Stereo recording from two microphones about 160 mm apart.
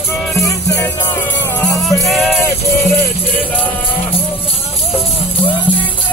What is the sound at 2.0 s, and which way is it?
Music, centre (ahead or behind).